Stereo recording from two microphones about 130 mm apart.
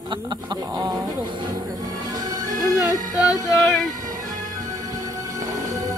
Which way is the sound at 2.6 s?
30° right (ahead or behind).